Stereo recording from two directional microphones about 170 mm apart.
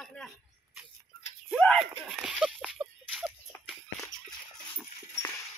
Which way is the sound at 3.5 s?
10° left (ahead or behind).